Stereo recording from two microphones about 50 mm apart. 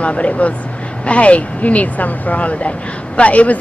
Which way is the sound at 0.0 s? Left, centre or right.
Left.